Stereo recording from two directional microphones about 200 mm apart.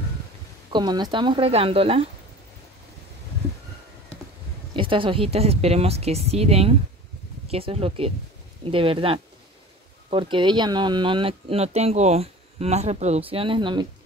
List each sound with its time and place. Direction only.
0.7 s a woman's voice: 20° right (ahead or behind)
4.7 s a woman's voice: 25° right (ahead or behind)